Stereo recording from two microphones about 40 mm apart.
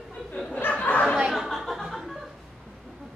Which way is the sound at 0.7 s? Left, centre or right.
Left.